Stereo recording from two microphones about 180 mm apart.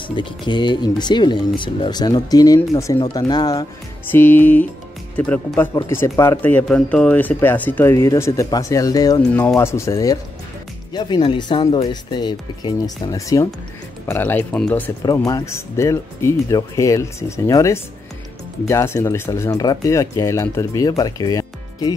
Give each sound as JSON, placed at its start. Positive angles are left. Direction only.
{"t": 0.1, "sound": "speech", "side_deg": 25}
{"t": 4.1, "sound": "speech", "side_deg": 10}
{"t": 9.3, "sound": "speech", "side_deg": 10}
{"t": 15.0, "sound": "speech", "side_deg": 20}